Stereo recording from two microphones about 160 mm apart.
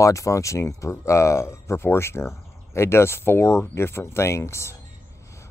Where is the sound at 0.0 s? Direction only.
20° left (ahead or behind).